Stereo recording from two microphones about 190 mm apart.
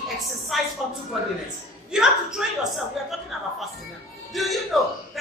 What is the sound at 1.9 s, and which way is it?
A woman's voice, 5° right (ahead or behind).